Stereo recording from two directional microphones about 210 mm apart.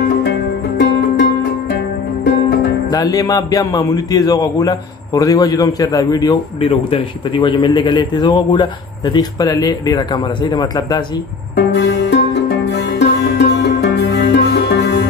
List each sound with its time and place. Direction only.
0.0 s music: 55° left (ahead or behind)
2.9 s a man's voice: 15° left (ahead or behind)
11.5 s music: 55° left (ahead or behind)